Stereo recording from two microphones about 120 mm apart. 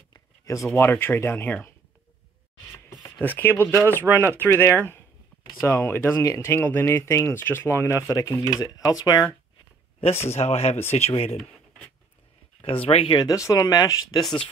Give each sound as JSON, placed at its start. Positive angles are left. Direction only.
{"t": 0.1, "sound": "a sound", "side_deg": 25}
{"t": 0.7, "sound": "speech", "side_deg": 15}
{"t": 3.2, "sound": "speech", "side_deg": 15}
{"t": 10.3, "sound": "speech", "side_deg": 60}
{"t": 12.6, "sound": "speech", "side_deg": 50}
{"t": 13.2, "sound": "speech", "side_deg": 30}
{"t": 14.2, "sound": "speech", "side_deg": 10}